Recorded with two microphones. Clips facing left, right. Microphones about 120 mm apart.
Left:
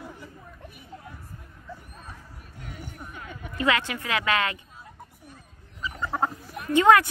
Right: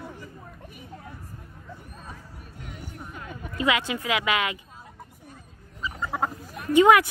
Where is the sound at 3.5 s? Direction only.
15° right (ahead or behind).